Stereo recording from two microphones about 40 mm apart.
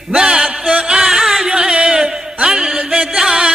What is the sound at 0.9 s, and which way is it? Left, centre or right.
Music, centre.